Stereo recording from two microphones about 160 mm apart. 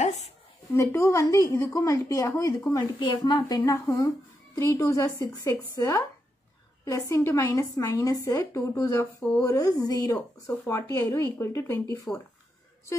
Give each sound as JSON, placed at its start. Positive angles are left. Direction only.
{"t": 0.7, "sound": "a woman's voice", "side_deg": 15}